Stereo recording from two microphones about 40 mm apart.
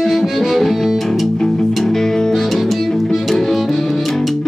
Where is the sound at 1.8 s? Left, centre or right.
Centre.